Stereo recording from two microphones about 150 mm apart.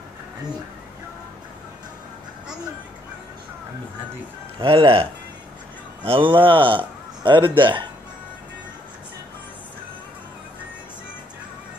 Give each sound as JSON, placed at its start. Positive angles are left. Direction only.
{"t": 4.6, "sound": "speech", "side_deg": -35}
{"t": 6.0, "sound": "speech", "side_deg": -35}